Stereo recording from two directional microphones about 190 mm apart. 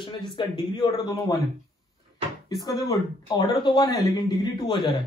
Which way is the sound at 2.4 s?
20° left (ahead or behind).